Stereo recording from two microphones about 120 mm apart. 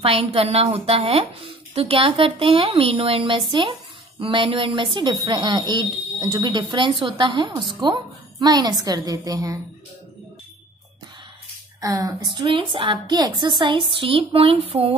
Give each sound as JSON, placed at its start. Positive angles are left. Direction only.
{"t": 0.0, "sound": "speech", "side_deg": -55}
{"t": 11.8, "sound": "speech", "side_deg": -30}